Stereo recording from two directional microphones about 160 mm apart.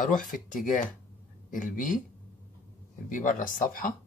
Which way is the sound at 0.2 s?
55° left (ahead or behind).